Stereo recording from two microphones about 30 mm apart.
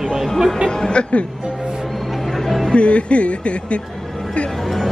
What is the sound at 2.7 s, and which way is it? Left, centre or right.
Speech, left.